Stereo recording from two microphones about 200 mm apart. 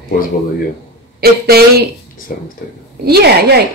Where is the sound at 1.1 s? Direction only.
50° right (ahead or behind).